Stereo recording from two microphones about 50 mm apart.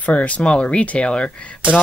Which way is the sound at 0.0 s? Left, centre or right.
Left.